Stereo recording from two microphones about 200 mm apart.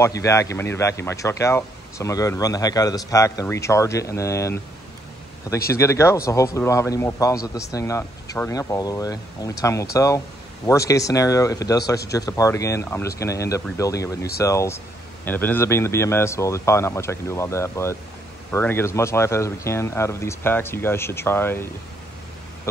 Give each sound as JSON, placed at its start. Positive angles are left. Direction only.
{"t": 0.0, "sound": "speech", "side_deg": 15}
{"t": 5.7, "sound": "speech", "side_deg": 15}